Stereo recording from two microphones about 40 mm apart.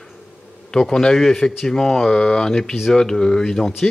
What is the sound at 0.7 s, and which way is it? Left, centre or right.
Speech, centre.